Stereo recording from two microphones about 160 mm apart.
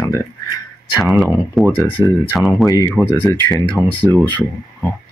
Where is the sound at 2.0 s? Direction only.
20° left (ahead or behind).